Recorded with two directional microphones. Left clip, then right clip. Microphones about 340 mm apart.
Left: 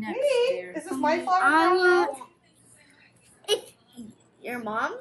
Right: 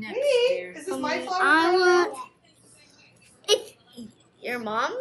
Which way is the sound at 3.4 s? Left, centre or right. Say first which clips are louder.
Right 4 dB; centre.